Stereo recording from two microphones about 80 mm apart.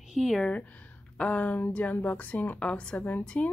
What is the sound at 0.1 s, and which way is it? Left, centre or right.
Speech, centre.